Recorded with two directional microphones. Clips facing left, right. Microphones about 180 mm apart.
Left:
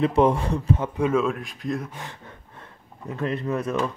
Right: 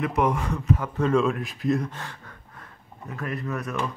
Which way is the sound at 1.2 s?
Centre (ahead or behind).